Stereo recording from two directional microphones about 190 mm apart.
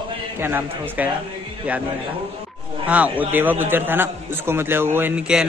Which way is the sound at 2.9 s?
10° right (ahead or behind).